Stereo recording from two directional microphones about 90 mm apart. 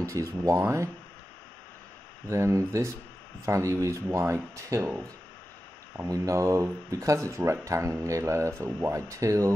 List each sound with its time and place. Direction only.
0.0 s speech: 35° right (ahead or behind)
2.2 s speech: 35° right (ahead or behind)
6.0 s speech: 40° right (ahead or behind)